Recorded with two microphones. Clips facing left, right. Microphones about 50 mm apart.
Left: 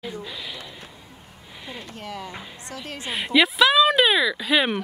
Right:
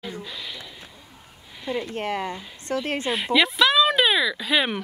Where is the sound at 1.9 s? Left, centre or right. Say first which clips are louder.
Right 7 dB; right.